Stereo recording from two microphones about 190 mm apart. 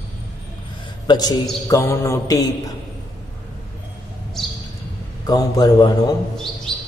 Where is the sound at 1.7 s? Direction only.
15° left (ahead or behind).